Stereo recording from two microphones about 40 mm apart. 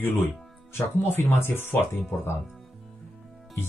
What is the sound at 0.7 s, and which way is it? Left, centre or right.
Speech, left.